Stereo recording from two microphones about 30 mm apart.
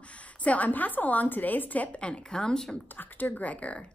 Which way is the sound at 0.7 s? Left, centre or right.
Left.